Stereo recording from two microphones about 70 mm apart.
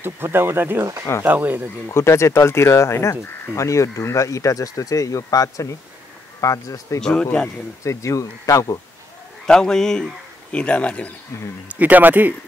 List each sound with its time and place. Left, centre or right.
0.0 s speech: right
1.9 s speech: left
7.0 s speech: centre
7.8 s speech: left
9.5 s speech: centre
11.7 s speech: right